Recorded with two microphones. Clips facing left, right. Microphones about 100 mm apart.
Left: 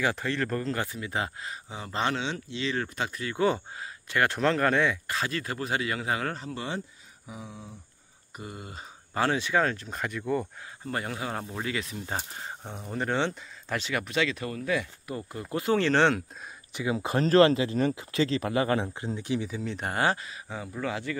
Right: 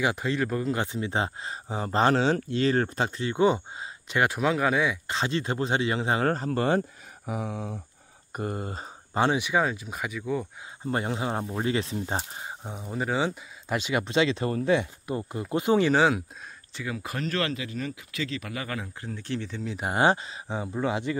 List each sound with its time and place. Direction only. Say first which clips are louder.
0.0 s speech: right 2 dB; 15° right (ahead or behind)
5.0 s speech: right 3 dB; 25° right (ahead or behind)
6.2 s speech: right 9 dB; 45° right (ahead or behind)
7.2 s a sound: right 10 dB; 65° right (ahead or behind)
8.3 s speech: right 9 dB; 45° right (ahead or behind)
9.1 s speech: right 2 dB; 20° right (ahead or behind); by 10.5 s centre (ahead or behind)
10.9 s speech: right 4 dB; 25° right (ahead or behind); by 16.3 s 5° right (ahead or behind)
16.7 s speech: left 6 dB; 20° left (ahead or behind)
18.9 s speech: left 3 dB; 20° left (ahead or behind)
19.6 s speech: right 1 dB; 5° right (ahead or behind)
19.9 s speech: right 5 dB; 20° right (ahead or behind)